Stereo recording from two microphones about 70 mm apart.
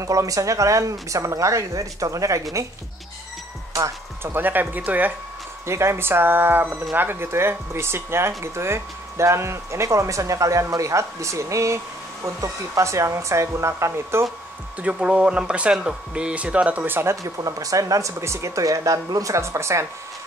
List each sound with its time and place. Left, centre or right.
0.0 s speech: right
4.2 s speech: right
5.7 s speech: right
14.8 s speech: centre
17.1 s speech: right